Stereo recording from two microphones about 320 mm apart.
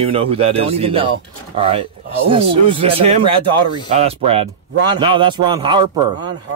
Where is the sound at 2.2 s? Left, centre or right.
Centre.